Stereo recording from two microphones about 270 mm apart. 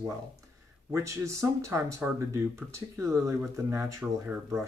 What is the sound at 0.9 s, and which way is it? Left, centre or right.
Speech, centre.